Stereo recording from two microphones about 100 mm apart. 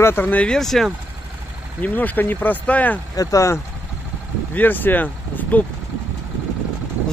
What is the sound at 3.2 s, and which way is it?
Speech, 35° left (ahead or behind).